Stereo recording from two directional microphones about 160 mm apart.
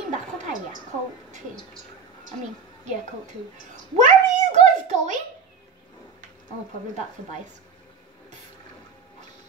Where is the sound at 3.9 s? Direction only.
45° right (ahead or behind).